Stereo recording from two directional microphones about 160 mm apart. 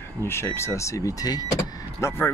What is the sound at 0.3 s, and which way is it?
Speech, 15° left (ahead or behind).